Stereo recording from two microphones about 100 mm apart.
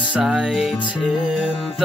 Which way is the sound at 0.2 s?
5° right (ahead or behind).